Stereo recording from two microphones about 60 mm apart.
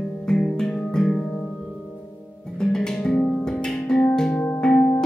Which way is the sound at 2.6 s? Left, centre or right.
Centre.